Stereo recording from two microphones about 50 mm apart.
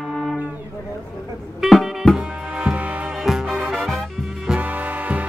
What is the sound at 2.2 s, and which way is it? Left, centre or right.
Music, right.